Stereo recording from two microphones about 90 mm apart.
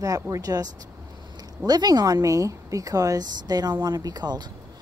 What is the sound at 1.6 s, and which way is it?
Speech, 50° right (ahead or behind).